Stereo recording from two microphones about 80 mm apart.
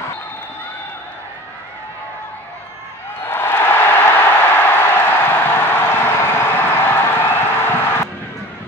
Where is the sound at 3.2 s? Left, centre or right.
Left.